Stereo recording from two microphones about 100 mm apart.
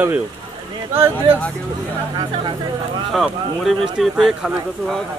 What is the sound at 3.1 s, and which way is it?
Speech, centre (ahead or behind).